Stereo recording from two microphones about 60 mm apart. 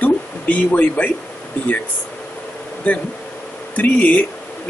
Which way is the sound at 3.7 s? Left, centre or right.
Left.